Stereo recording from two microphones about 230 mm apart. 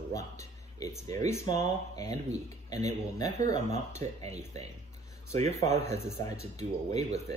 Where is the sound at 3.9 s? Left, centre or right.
Right.